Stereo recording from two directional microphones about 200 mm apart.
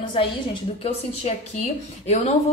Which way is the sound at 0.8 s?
35° left (ahead or behind).